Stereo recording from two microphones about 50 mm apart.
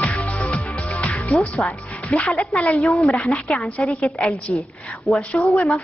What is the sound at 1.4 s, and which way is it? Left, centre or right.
A woman's voice, left.